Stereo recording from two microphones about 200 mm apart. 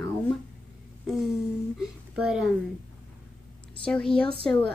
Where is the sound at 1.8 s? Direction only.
5° right (ahead or behind).